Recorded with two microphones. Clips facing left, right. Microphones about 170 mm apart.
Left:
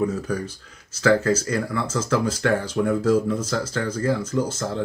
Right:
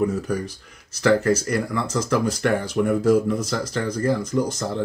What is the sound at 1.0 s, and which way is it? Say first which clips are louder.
Speech: right 1 dB; 15° right (ahead or behind).